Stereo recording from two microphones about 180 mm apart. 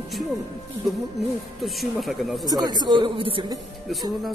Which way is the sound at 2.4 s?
20° right (ahead or behind).